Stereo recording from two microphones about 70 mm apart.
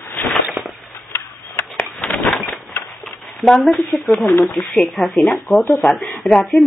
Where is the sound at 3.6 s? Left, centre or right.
Centre.